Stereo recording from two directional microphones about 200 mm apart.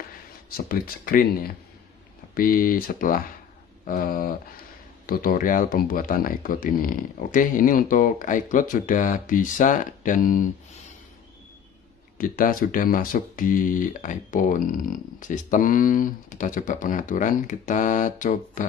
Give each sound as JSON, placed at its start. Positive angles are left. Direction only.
{"t": 0.6, "sound": "speech", "side_deg": 45}
{"t": 12.2, "sound": "speech", "side_deg": 45}